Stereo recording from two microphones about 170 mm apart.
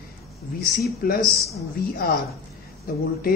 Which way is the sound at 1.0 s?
60° left (ahead or behind).